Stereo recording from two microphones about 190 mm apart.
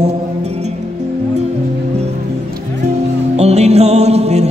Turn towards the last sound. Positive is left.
turn(degrees=-35)  # may be behind; listen again after turning